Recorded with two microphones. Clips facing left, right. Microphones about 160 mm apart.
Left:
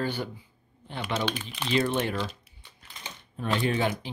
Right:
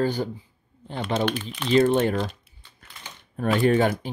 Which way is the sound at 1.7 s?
40° right (ahead or behind).